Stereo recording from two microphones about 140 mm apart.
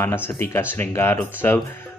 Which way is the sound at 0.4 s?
15° left (ahead or behind).